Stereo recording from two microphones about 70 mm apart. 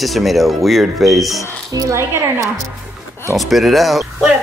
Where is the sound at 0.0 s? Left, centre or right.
Centre.